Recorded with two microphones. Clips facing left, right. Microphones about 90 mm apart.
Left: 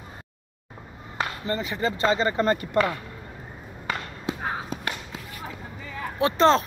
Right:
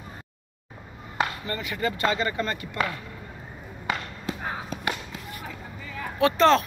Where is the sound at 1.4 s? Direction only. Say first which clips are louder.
Left 2 dB; 30° left (ahead or behind).